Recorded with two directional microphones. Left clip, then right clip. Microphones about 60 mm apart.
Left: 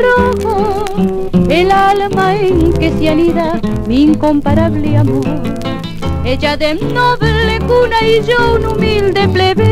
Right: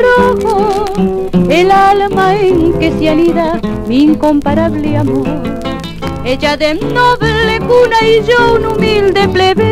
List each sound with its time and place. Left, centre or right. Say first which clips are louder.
0.0 s music: right 2 dB; right
3.9 s speech: right 1 dB; centre
6.4 s music: right 2 dB; centre